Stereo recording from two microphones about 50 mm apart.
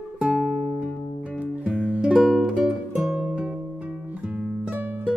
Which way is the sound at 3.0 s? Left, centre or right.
Right.